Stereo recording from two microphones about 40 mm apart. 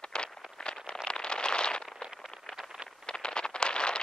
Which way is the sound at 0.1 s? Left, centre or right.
Left.